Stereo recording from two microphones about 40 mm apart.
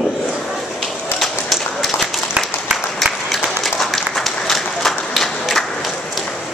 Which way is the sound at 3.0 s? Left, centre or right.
Centre.